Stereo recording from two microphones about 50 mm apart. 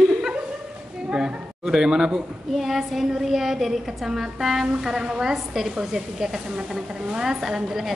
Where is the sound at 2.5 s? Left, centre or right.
Centre.